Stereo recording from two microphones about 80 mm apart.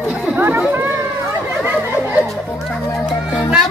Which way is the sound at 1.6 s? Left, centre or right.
Centre.